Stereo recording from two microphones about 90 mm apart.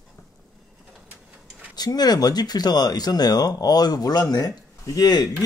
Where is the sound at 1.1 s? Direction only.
15° right (ahead or behind).